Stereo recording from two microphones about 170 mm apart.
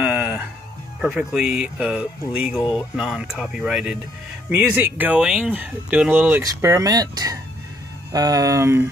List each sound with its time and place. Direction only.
0.0 s music: 10° right (ahead or behind)
1.0 s speech: 5° right (ahead or behind)